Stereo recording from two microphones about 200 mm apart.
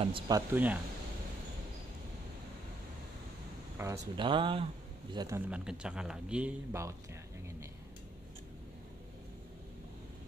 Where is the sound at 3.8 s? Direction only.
20° right (ahead or behind).